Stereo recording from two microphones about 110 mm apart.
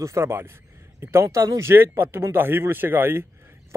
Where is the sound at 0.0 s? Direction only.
25° right (ahead or behind).